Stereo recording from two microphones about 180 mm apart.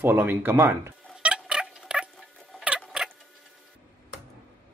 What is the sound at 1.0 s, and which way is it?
Rodents, 5° right (ahead or behind).